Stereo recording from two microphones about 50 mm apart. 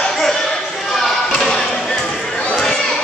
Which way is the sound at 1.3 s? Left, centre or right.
Centre.